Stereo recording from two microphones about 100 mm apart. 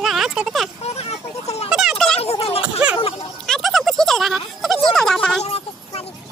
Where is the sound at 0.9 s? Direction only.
90° left.